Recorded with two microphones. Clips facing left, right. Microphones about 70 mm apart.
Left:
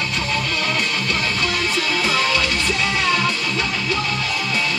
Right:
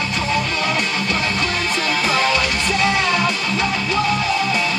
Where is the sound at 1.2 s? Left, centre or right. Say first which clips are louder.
Right 1 dB; right.